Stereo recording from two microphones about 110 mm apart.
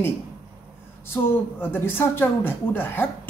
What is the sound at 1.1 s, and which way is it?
A woman's voice, 20° left (ahead or behind).